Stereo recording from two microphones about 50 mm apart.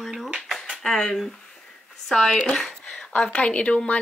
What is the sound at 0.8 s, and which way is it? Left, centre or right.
Speech, centre.